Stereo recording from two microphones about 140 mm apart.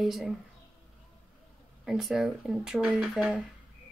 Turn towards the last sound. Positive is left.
turn(degrees=-5)  # may be behind; listen again after turning